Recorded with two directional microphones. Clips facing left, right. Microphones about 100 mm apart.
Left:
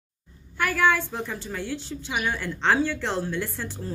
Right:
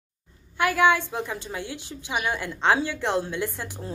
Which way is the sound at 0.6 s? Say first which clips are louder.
Right 2 dB; 15° right (ahead or behind).